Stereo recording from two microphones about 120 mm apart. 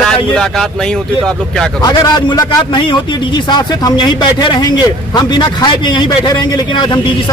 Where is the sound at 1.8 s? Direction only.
35° left (ahead or behind).